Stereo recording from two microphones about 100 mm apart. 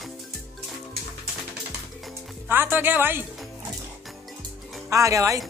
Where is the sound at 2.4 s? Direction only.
20° right (ahead or behind).